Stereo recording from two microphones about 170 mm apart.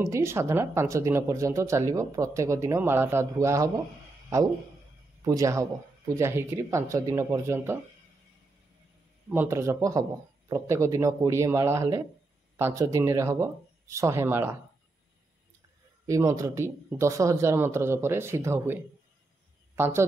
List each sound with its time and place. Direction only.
0.1 s speech: 15° right (ahead or behind)
5.2 s speech: 20° right (ahead or behind)
9.3 s speech: 15° right (ahead or behind)
16.1 s a woman's voice: 20° right (ahead or behind)